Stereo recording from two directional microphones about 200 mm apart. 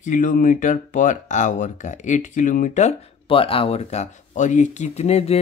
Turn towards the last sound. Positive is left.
turn(degrees=30)  # may be behind; listen again after turning